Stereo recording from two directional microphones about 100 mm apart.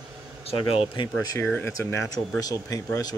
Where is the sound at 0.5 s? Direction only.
70° left (ahead or behind).